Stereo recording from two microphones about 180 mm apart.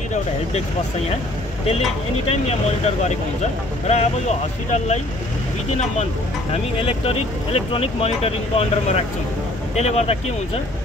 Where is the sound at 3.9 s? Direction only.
40° left (ahead or behind).